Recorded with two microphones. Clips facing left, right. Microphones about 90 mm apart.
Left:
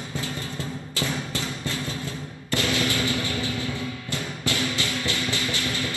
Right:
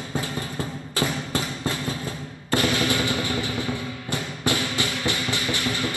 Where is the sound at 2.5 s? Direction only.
25° right (ahead or behind).